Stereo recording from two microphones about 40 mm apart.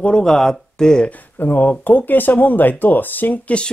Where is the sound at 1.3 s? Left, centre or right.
Left.